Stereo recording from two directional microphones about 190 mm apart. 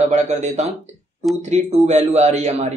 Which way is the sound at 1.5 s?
35° right (ahead or behind).